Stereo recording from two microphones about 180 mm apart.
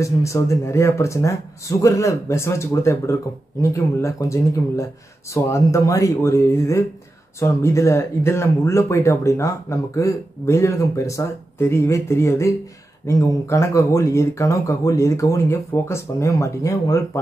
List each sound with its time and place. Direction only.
0.0 s speech: 15° left (ahead or behind)